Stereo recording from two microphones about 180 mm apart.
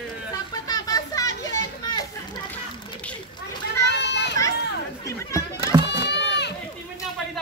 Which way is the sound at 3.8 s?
70° left (ahead or behind).